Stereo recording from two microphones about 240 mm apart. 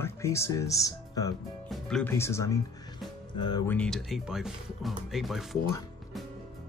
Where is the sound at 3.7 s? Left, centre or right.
Centre.